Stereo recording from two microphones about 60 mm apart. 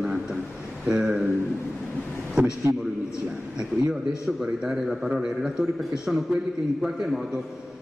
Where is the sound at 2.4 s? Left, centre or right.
Centre.